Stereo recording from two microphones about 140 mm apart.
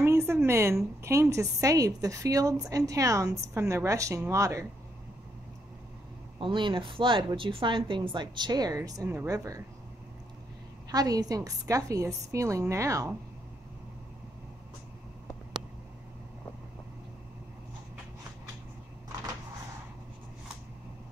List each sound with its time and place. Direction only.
0.0 s a sound: 20° right (ahead or behind)
1.0 s a woman's voice: 20° right (ahead or behind)
6.4 s a woman's voice: 35° right (ahead or behind)
10.9 s a woman's voice: 25° right (ahead or behind)